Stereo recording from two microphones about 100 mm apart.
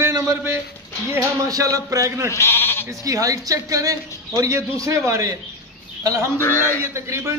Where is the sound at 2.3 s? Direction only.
25° left (ahead or behind).